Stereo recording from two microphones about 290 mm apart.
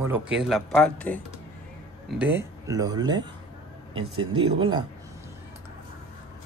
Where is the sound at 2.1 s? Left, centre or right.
Centre.